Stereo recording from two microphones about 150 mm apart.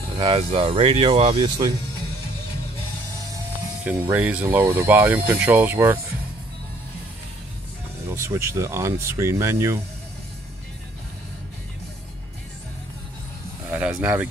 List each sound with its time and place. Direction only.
0.2 s speech: 40° right (ahead or behind)
3.8 s speech: 10° right (ahead or behind)
8.1 s speech: 15° right (ahead or behind)
13.7 s speech: 10° right (ahead or behind)